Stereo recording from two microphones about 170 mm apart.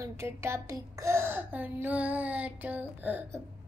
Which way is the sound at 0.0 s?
15° right (ahead or behind).